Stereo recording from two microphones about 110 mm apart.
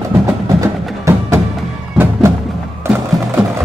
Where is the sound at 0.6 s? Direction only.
25° right (ahead or behind).